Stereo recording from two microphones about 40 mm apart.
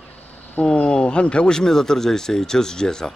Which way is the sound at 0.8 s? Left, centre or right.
Left.